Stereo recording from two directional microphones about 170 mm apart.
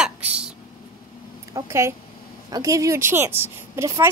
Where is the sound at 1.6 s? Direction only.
15° right (ahead or behind).